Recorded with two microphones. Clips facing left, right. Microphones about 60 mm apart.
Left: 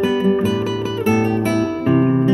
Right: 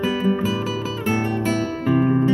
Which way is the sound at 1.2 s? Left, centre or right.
Left.